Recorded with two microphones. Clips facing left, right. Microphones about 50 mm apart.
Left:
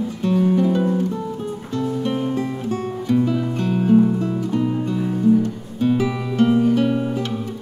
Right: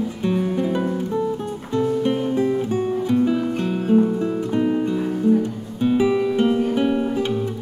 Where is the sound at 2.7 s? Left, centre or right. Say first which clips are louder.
Right 1 dB; centre.